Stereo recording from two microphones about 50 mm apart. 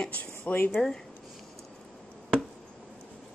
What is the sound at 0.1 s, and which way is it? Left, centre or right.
Speech, left.